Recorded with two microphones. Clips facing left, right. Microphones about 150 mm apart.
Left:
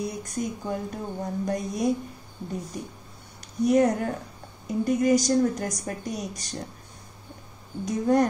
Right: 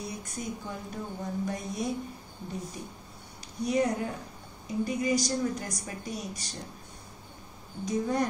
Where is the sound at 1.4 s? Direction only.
45° left (ahead or behind).